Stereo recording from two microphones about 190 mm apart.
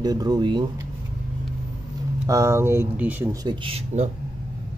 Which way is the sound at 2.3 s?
15° right (ahead or behind).